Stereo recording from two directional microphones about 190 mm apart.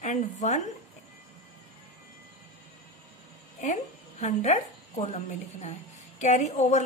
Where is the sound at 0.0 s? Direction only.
40° left (ahead or behind).